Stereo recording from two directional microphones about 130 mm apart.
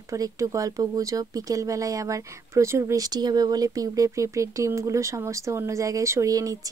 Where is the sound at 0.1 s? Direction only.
25° right (ahead or behind).